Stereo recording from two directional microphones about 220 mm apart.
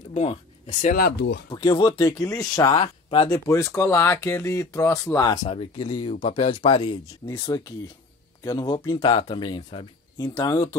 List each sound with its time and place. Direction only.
0.1 s speech: 30° left (ahead or behind); by 1.4 s 50° left (ahead or behind)
1.5 s speech: 20° left (ahead or behind)
3.3 s speech: 15° left (ahead or behind)